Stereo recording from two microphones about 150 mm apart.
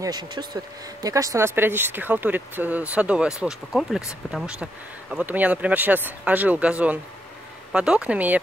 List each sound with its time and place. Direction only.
0.0 s speech: 30° right (ahead or behind); by 8.4 s 10° right (ahead or behind)